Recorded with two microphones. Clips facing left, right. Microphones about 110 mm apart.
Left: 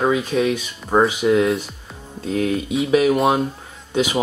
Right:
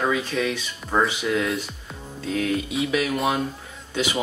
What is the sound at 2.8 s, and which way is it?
Speech, 30° left (ahead or behind).